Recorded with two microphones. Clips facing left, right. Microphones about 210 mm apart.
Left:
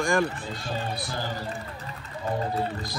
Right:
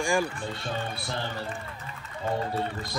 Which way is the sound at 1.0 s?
25° right (ahead or behind).